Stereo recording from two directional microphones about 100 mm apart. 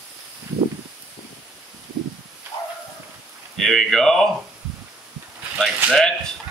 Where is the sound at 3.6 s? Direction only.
Centre (ahead or behind).